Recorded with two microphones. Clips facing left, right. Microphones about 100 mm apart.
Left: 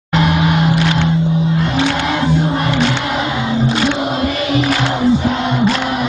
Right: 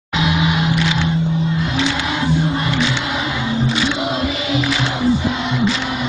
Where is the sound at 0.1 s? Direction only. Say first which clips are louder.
Left 4 dB; 60° left (ahead or behind).